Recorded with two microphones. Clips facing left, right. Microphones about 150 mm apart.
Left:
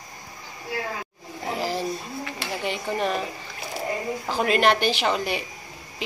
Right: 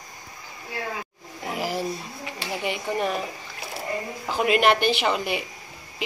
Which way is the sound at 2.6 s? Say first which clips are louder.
Even; 5° right (ahead or behind).